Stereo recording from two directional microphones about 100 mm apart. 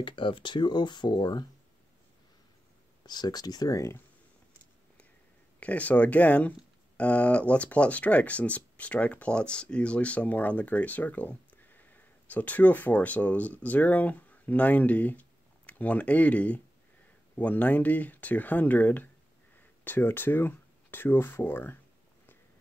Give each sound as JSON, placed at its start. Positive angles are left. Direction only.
{"t": 0.0, "sound": "speech", "side_deg": 55}
{"t": 3.1, "sound": "speech", "side_deg": 45}
{"t": 5.6, "sound": "speech", "side_deg": 15}